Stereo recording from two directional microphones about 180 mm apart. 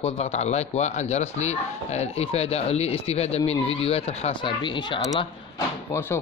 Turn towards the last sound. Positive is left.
turn(degrees=15)  # may be behind; listen again after turning